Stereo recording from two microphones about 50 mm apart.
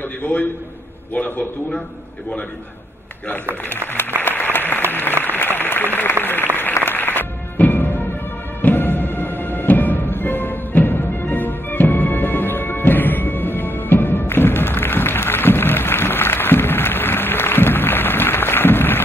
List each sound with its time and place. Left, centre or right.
0.2 s a man's voice: left
4.2 s applause: left
5.2 s a sound: left
6.5 s music: left